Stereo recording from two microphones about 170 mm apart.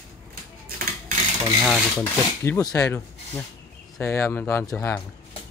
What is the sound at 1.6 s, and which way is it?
Speech, centre (ahead or behind).